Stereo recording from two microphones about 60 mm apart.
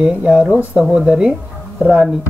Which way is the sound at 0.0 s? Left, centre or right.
Centre.